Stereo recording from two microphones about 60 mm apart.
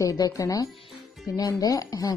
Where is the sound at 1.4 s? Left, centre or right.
Left.